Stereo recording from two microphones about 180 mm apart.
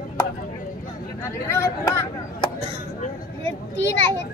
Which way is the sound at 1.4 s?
15° left (ahead or behind).